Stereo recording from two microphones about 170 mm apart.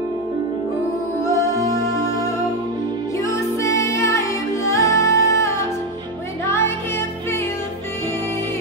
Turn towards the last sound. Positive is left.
turn(degrees=15)  # may be behind; listen again after turning